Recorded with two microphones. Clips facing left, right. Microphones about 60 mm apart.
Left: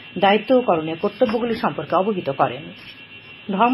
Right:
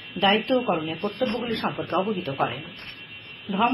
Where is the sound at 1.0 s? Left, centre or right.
Left.